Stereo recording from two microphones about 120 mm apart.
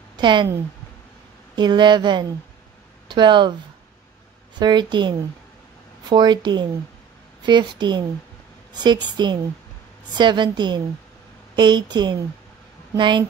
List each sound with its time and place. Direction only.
0.2 s speech: 40° right (ahead or behind)
1.5 s speech: 40° right (ahead or behind)
4.6 s speech: 40° right (ahead or behind)